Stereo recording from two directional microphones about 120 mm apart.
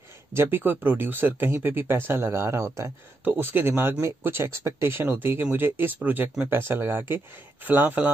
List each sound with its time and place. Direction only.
0.3 s speech: 20° right (ahead or behind)